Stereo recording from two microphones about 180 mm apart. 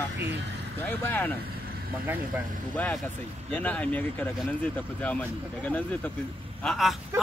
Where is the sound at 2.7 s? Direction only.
10° left (ahead or behind).